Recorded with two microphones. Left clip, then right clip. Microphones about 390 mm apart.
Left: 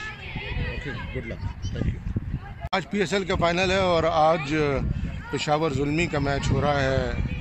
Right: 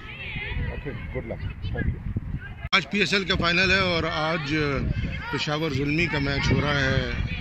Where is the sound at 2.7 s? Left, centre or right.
Left.